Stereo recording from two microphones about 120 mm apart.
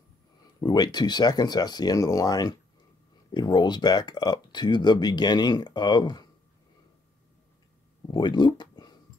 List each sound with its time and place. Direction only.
0.4 s speech: 35° left (ahead or behind)
8.1 s speech: 40° left (ahead or behind)